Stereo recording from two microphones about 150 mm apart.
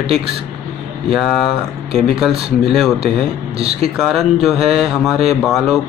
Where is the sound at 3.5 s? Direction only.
40° right (ahead or behind).